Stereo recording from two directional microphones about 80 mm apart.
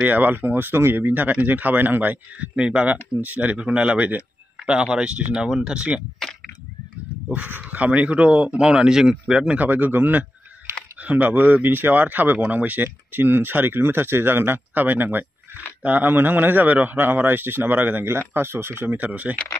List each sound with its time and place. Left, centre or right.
0.0 s speech: right
7.2 s speech: right
9.6 s speech: right